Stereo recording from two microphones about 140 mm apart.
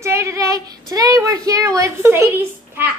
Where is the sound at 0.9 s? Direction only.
25° right (ahead or behind).